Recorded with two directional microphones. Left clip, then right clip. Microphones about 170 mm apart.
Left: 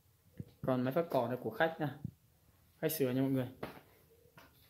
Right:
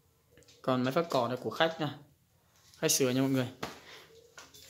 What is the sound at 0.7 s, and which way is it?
Speech, 10° right (ahead or behind).